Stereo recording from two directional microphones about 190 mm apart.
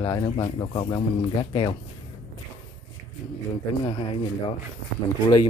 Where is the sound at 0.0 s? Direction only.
20° left (ahead or behind).